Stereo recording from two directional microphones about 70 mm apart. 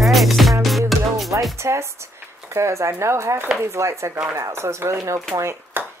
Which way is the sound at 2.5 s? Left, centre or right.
Right.